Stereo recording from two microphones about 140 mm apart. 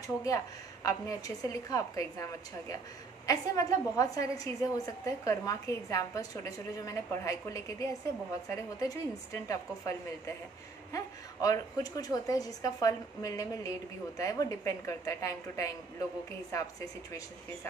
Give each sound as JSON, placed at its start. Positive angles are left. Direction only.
{"t": 0.0, "sound": "a woman's voice", "side_deg": 25}
{"t": 3.3, "sound": "a woman's voice", "side_deg": 25}
{"t": 11.4, "sound": "a woman's voice", "side_deg": 25}